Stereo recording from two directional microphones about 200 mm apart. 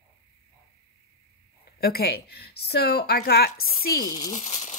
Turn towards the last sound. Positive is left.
turn(degrees=35)  # may be behind; listen again after turning